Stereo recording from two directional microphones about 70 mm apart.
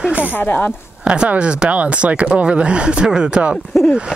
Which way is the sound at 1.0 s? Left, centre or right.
Centre.